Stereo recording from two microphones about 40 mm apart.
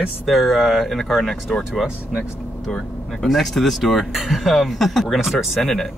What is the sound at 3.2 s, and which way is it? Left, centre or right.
Speech, centre.